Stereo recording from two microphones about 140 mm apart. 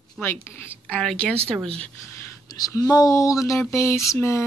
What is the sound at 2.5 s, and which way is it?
Speech, 25° left (ahead or behind).